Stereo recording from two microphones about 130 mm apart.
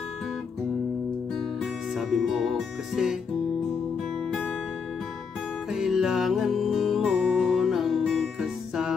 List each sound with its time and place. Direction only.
1.6 s music: centre (ahead or behind)
5.7 s music: 5° right (ahead or behind)